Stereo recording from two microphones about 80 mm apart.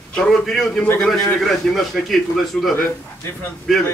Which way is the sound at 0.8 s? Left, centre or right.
Left.